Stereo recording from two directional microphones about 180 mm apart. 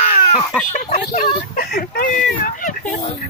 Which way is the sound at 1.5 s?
55° left (ahead or behind).